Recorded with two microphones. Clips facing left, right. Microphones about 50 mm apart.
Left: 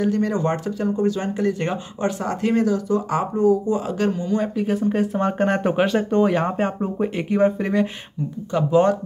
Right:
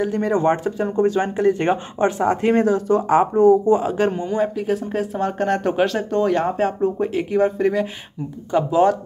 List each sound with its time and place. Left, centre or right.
0.1 s speech: right
0.8 s speech: right
1.3 s speech: right
3.8 s speech: right
4.6 s speech: centre